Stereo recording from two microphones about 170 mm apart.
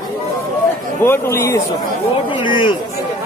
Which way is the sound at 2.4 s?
30° left (ahead or behind).